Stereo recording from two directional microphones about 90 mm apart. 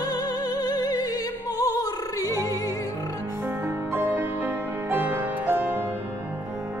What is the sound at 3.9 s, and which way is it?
Music, 20° right (ahead or behind).